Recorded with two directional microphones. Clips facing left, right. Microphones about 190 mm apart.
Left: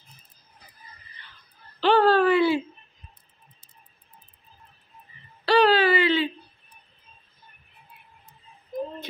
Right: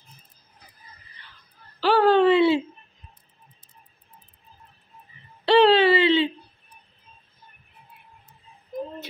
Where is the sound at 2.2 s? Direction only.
25° right (ahead or behind).